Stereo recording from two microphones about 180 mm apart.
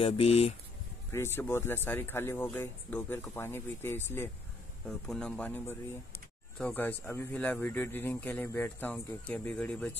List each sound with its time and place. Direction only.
0.0 s speech: 35° left (ahead or behind)
1.1 s speech: 15° left (ahead or behind)